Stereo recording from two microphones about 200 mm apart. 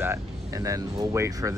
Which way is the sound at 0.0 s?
15° right (ahead or behind).